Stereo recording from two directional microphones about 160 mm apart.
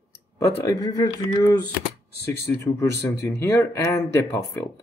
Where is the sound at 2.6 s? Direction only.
15° left (ahead or behind).